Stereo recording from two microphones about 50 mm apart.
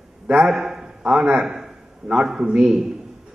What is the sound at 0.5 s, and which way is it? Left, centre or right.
A man's voice, centre.